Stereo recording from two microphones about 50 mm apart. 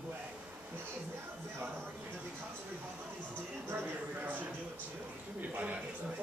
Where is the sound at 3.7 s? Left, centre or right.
Right.